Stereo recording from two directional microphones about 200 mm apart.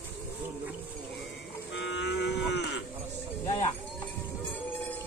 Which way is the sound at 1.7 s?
60° left (ahead or behind).